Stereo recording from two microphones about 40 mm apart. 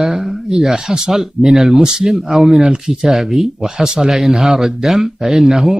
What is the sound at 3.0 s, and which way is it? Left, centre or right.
Speech, centre.